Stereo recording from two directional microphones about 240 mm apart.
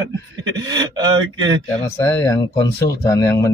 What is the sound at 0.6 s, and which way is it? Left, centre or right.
Speech, centre.